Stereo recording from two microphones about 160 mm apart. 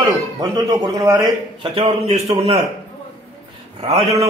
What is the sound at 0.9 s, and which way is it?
A man's voice, 25° right (ahead or behind).